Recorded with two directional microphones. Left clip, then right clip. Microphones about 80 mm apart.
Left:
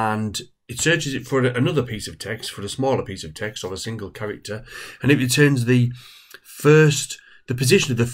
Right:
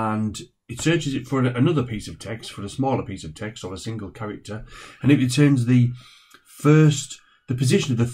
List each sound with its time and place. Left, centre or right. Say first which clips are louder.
0.0 s speech: left 3 dB; left